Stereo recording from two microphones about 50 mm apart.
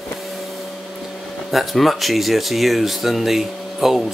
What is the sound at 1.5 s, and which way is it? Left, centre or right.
Speech, centre.